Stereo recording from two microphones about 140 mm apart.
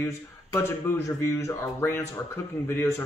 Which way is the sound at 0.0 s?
20° left (ahead or behind).